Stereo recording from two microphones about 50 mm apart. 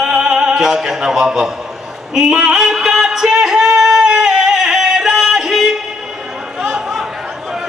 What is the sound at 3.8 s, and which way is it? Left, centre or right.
Music, centre.